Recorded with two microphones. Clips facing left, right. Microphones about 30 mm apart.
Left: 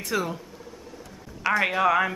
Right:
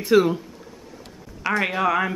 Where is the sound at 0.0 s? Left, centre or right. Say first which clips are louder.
Right 10 dB; right.